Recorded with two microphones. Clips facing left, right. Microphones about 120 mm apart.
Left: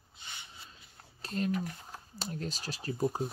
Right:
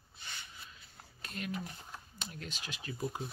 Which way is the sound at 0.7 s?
30° left (ahead or behind).